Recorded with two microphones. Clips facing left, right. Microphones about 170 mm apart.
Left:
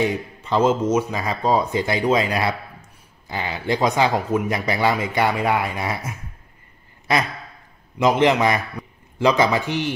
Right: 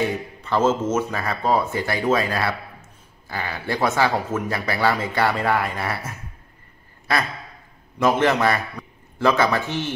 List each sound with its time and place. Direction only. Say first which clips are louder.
0.0 s speech: left 2 dB; 15° left (ahead or behind)